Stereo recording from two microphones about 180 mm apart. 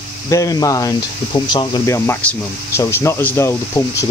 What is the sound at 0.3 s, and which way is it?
Speech, 20° left (ahead or behind).